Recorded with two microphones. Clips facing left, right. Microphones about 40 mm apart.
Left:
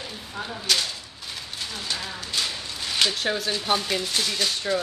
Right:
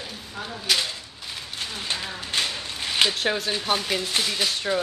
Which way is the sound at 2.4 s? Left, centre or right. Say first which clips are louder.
Right 2 dB; right.